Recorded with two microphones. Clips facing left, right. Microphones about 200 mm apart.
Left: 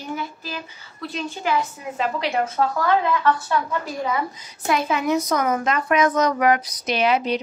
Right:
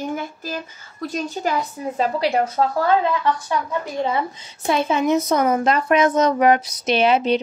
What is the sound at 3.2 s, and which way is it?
Speech, 15° right (ahead or behind).